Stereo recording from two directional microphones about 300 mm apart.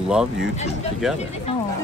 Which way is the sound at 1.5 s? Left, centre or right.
Centre.